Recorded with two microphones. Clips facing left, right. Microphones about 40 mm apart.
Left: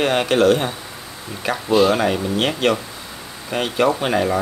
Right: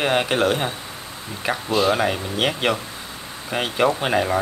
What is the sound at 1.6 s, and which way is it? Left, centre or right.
A man's voice, centre.